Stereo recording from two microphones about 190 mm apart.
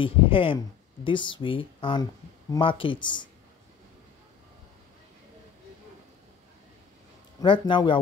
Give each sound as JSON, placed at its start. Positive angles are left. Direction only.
{"t": 0.0, "sound": "speech", "side_deg": 30}
{"t": 7.3, "sound": "speech", "side_deg": 25}